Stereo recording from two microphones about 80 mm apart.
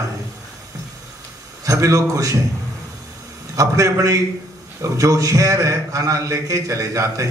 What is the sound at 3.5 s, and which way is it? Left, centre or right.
A man's voice, right.